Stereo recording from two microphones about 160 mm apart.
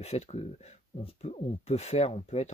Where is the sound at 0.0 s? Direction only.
40° left (ahead or behind).